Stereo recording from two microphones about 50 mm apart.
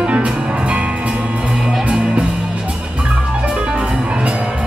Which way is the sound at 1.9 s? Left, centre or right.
Right.